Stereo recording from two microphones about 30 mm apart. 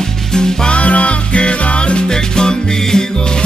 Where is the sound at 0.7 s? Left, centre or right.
Left.